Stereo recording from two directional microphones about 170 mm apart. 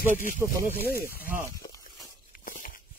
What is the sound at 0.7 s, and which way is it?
Speech, 60° left (ahead or behind).